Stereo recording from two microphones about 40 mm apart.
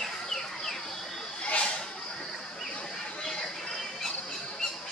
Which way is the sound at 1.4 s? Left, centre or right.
Left.